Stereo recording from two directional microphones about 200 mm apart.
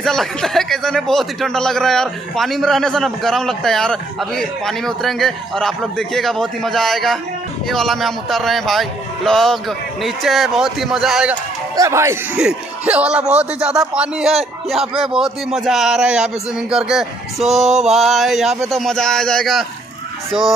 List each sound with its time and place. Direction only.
0.0 s speech: centre (ahead or behind)
11.7 s speech: 15° right (ahead or behind)
17.6 s mantra: 35° right (ahead or behind)
17.9 s speech: centre (ahead or behind)